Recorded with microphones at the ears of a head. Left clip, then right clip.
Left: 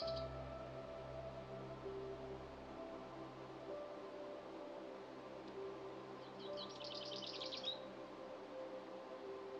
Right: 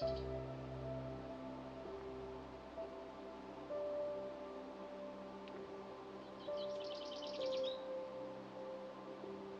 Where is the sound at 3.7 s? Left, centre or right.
Right.